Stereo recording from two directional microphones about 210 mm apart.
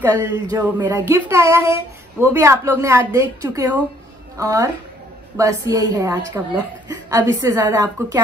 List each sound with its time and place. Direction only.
0.0 s speech: 15° right (ahead or behind)